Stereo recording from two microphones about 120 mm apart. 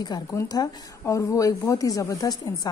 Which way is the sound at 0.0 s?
35° left (ahead or behind).